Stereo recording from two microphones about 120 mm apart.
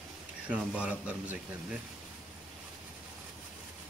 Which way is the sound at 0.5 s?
10° right (ahead or behind).